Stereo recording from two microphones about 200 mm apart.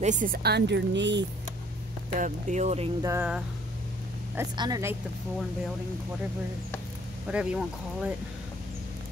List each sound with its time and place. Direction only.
0.0 s speech: 40° right (ahead or behind); by 1.2 s 60° right (ahead or behind)
2.1 s speech: 40° right (ahead or behind)
3.0 s speech: 10° right (ahead or behind)
4.4 s speech: 20° right (ahead or behind)
7.2 s speech: 5° right (ahead or behind)